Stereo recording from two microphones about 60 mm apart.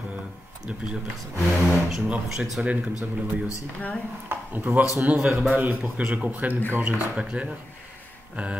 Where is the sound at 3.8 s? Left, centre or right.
Left.